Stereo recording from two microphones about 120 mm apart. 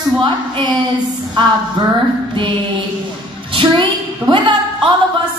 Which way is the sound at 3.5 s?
40° right (ahead or behind).